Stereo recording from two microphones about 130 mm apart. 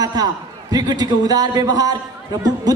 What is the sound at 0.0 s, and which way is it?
A man's voice, 30° right (ahead or behind).